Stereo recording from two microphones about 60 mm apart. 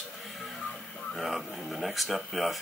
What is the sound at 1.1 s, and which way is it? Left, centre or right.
Speech, centre.